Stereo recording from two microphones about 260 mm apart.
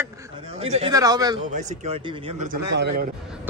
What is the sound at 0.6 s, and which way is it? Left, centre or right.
Speech, right.